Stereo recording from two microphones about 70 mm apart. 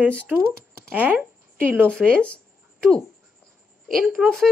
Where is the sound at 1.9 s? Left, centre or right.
Centre.